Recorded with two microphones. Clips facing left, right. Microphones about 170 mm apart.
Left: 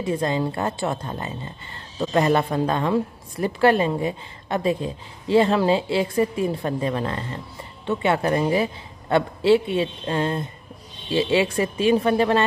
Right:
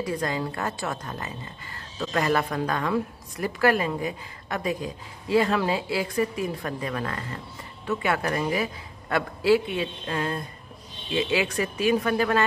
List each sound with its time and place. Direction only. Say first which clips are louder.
0.0 s a woman's voice: left 5 dB; 25° left (ahead or behind)